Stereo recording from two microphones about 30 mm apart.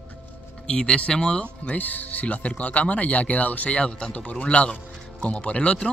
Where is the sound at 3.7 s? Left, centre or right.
Left.